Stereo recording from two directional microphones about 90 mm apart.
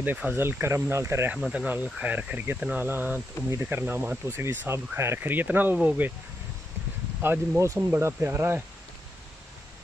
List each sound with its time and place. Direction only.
0.0 s speech: 20° right (ahead or behind)
1.5 s speech: 15° right (ahead or behind)
7.2 s speech: 30° right (ahead or behind)